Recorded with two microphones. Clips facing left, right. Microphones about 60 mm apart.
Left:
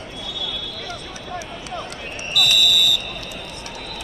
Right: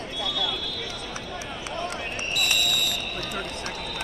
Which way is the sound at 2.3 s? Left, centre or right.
Left.